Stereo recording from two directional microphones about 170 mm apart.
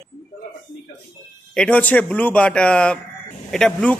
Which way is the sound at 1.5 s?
5° left (ahead or behind).